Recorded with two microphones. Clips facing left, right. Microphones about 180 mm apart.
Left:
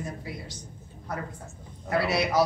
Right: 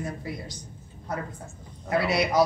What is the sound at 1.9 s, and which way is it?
Speech, 20° right (ahead or behind).